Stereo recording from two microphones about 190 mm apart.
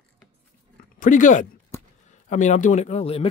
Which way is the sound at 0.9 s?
45° left (ahead or behind).